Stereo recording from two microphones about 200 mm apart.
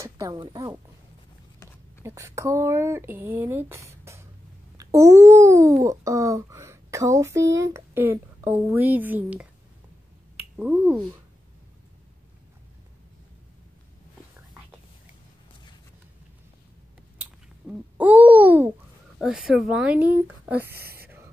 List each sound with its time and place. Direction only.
0.0 s speech: 20° right (ahead or behind)
2.0 s a child's voice: 15° right (ahead or behind)
10.6 s a child's voice: 10° right (ahead or behind)
17.2 s babbling: 10° right (ahead or behind)
19.1 s speech: centre (ahead or behind)
20.6 s speech: 50° right (ahead or behind)